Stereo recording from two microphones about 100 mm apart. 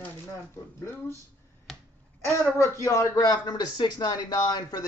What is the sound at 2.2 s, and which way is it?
Speech, 30° left (ahead or behind).